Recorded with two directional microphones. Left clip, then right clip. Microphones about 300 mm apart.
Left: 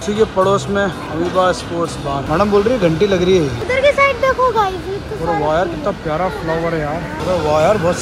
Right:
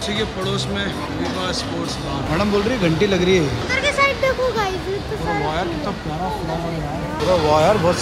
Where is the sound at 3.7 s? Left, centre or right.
Centre.